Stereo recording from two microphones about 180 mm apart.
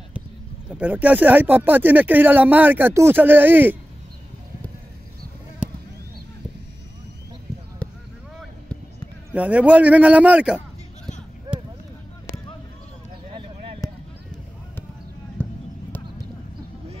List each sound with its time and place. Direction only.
0.7 s speech: 10° right (ahead or behind)
7.8 s basketball bounce: 5° left (ahead or behind)
9.3 s speech: 10° right (ahead or behind)
13.8 s a sound: 20° left (ahead or behind)
15.4 s basketball bounce: 5° left (ahead or behind)